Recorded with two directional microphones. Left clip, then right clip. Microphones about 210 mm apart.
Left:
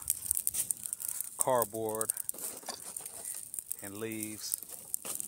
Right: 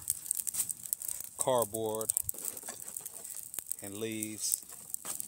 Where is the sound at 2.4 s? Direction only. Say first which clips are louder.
Left 2 dB; 20° left (ahead or behind).